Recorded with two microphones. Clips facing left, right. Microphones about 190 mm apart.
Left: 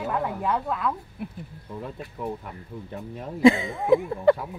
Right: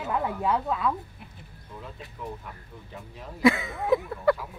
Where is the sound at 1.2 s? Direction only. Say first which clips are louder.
Left 13 dB; 60° left (ahead or behind).